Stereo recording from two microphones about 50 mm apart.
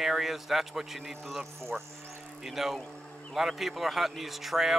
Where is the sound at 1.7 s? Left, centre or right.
Right.